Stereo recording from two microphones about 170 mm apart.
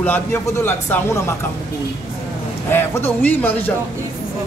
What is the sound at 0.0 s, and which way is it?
Speech, 10° left (ahead or behind).